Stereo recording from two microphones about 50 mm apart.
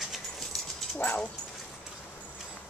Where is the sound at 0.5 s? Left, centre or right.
Centre.